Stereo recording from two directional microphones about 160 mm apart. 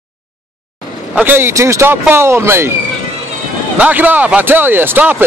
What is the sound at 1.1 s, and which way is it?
Speech, 10° right (ahead or behind).